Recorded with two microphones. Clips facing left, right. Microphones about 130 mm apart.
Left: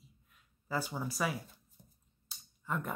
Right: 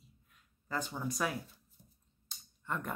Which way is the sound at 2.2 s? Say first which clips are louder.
Left 1 dB; centre (ahead or behind).